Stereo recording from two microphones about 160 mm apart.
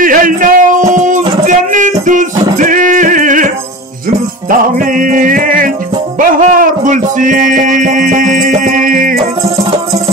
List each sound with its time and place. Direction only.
0.0 s music: 60° right (ahead or behind)
2.6 s a sound: 55° right (ahead or behind)
4.5 s music: 60° right (ahead or behind)